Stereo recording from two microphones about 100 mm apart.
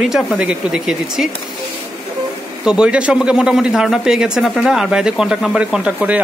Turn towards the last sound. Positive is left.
turn(degrees=-10)  # may be behind; listen again after turning